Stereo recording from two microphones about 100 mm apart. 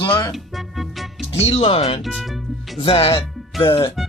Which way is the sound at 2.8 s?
60° left (ahead or behind).